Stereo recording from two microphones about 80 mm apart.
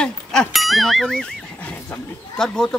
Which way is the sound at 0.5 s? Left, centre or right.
Centre.